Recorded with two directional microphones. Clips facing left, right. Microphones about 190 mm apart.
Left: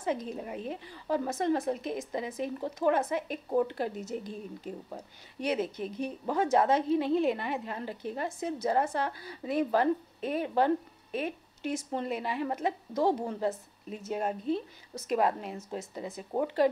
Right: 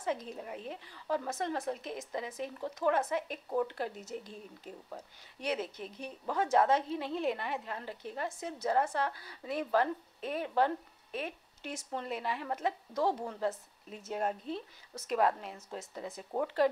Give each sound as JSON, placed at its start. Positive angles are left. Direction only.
{"t": 0.0, "sound": "a woman's voice", "side_deg": 15}